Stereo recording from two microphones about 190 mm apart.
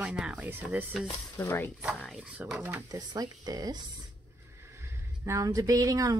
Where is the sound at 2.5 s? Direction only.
10° right (ahead or behind).